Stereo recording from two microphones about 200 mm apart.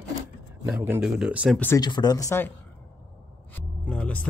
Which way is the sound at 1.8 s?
20° left (ahead or behind).